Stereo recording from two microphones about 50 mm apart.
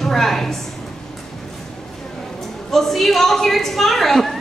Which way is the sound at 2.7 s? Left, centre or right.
Centre.